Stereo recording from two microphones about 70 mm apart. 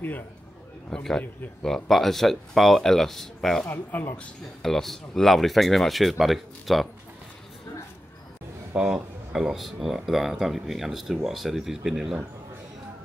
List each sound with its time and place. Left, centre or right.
0.8 s a man's voice: centre
3.6 s speech: left
4.6 s speech: centre
8.7 s speech: centre